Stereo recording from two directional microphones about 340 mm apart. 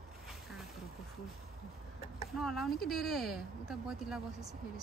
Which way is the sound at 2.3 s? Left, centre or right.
Centre.